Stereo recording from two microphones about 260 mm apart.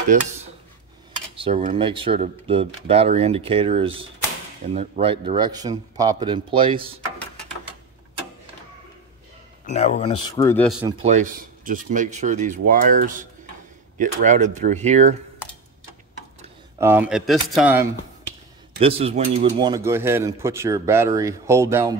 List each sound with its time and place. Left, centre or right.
0.1 s speech: right
1.3 s speech: right
9.7 s speech: left; by 10.7 s centre
10.9 s speech: right
16.7 s a man's voice: centre
18.8 s a man's voice: right